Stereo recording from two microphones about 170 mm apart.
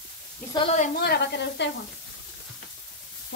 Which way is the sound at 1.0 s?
70° left (ahead or behind).